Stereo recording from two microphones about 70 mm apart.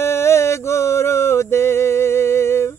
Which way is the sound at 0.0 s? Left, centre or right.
Left.